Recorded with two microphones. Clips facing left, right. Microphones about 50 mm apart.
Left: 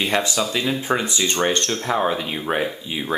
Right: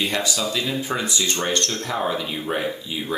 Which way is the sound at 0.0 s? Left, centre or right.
Left.